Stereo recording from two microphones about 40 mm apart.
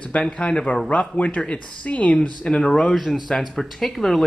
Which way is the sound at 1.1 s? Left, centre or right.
Left.